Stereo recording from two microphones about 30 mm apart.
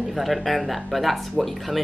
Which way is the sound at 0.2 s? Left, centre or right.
Centre.